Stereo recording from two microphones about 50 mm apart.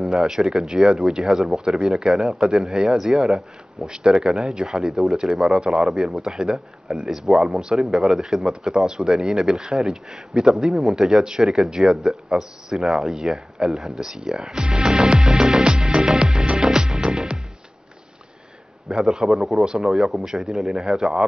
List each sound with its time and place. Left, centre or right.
0.0 s speech: centre
5.9 s speech: centre
15.9 s music: centre
18.9 s a man's voice: centre
19.6 s speech: centre